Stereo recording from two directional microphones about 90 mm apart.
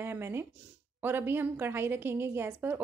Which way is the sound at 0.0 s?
25° right (ahead or behind).